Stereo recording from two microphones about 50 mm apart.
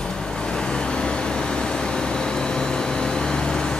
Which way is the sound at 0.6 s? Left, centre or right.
Centre.